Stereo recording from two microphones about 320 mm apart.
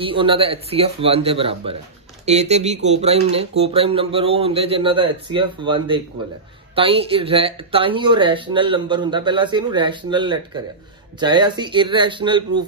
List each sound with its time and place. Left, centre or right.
0.0 s speech: centre